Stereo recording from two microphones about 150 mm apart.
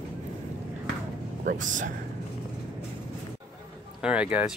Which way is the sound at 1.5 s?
60° right (ahead or behind).